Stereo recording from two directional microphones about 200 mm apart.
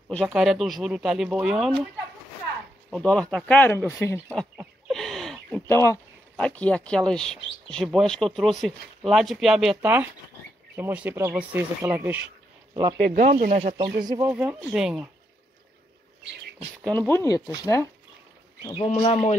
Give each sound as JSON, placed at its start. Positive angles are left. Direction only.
{"t": 0.1, "sound": "speech", "side_deg": 0}
{"t": 2.9, "sound": "speech", "side_deg": 5}
{"t": 4.6, "sound": "a sound", "side_deg": 0}
{"t": 5.7, "sound": "speech", "side_deg": 10}
{"t": 12.9, "sound": "speech", "side_deg": -45}
{"t": 14.0, "sound": "speech", "side_deg": -20}
{"t": 14.3, "sound": "speech", "side_deg": -10}
{"t": 16.8, "sound": "speech", "side_deg": 10}
{"t": 18.7, "sound": "speech", "side_deg": 30}